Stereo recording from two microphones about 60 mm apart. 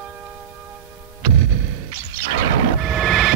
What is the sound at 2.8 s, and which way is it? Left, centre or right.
Vehicle, centre.